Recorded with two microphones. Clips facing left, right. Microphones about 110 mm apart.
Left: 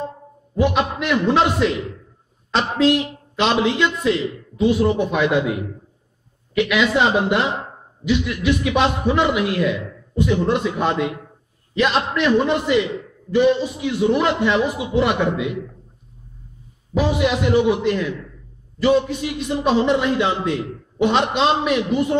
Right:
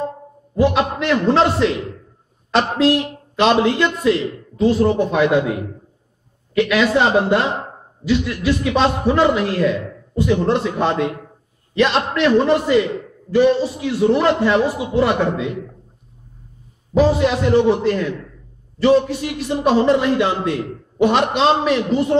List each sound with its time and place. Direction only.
0.6 s a man's voice: 35° right (ahead or behind)
16.9 s a man's voice: 30° right (ahead or behind)